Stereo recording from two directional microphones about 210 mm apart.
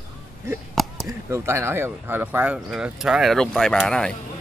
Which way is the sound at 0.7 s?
Centre (ahead or behind).